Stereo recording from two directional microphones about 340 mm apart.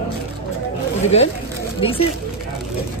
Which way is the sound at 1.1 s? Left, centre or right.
Centre.